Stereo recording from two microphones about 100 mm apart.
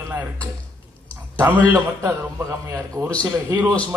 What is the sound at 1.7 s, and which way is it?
A man's voice, 30° right (ahead or behind).